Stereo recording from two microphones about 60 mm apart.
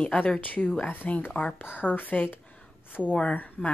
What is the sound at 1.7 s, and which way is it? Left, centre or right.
A woman's voice, left.